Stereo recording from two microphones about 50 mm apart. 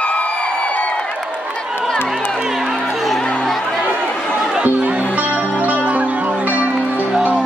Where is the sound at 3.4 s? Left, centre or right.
Centre.